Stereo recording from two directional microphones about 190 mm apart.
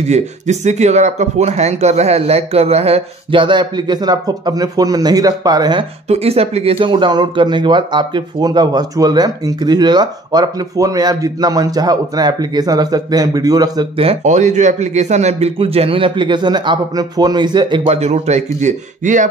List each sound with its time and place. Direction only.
0.0 s speech: 35° right (ahead or behind)